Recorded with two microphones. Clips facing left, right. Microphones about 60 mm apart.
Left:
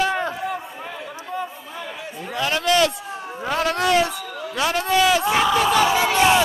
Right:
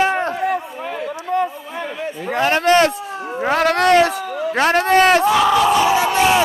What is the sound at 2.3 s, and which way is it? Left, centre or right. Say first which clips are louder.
A man's voice: right 6 dB; right.